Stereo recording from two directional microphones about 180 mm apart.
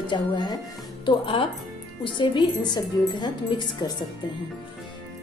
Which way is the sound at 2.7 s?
25° left (ahead or behind).